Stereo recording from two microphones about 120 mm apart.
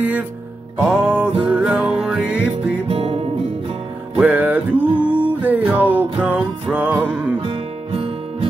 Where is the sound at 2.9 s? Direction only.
50° right (ahead or behind).